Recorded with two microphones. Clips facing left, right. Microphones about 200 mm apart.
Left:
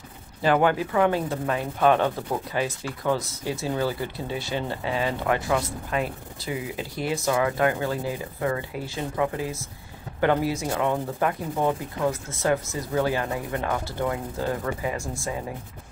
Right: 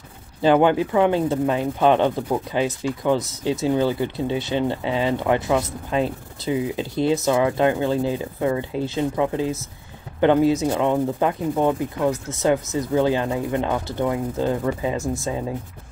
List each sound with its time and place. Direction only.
0.4 s speech: 25° right (ahead or behind)